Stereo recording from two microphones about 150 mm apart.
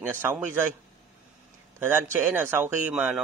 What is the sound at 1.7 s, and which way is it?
A man's voice, 15° right (ahead or behind).